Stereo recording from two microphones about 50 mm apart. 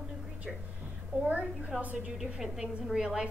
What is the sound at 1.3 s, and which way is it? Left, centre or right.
Speech, right.